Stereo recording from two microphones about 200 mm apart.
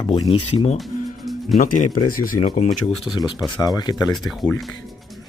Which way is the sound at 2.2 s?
40° left (ahead or behind).